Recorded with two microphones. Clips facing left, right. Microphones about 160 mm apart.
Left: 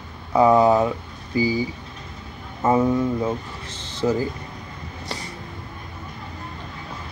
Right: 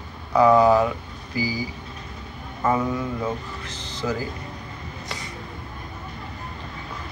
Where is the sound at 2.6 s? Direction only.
25° left (ahead or behind).